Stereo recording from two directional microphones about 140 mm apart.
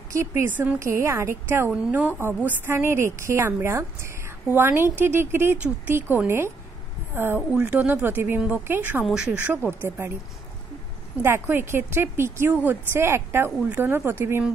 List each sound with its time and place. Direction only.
0.1 s a woman's voice: 20° right (ahead or behind)
11.2 s a woman's voice: 15° right (ahead or behind)